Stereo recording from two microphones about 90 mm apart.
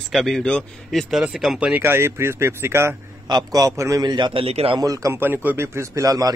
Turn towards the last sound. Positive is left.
turn(degrees=-40)  # may be behind; listen again after turning